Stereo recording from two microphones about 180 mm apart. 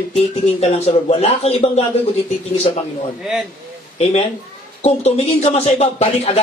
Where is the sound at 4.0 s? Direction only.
35° left (ahead or behind).